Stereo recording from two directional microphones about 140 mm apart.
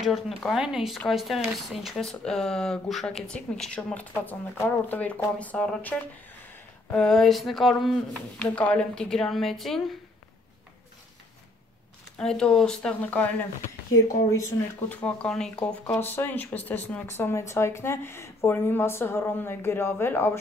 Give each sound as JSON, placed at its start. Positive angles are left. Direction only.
{"t": 0.0, "sound": "speech", "side_deg": 0}
{"t": 12.2, "sound": "speech", "side_deg": 5}
{"t": 14.0, "sound": "speech", "side_deg": 20}
{"t": 14.9, "sound": "speech", "side_deg": 10}